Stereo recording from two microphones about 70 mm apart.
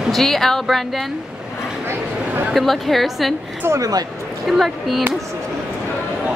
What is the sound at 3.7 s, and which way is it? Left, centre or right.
Speech, right.